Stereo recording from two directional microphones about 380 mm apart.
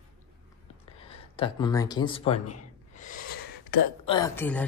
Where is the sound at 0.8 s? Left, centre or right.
Centre.